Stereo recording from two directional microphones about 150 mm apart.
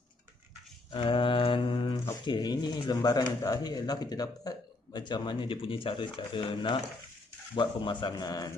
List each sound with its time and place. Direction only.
0.9 s mantra: 35° left (ahead or behind)
2.2 s speech: 30° left (ahead or behind)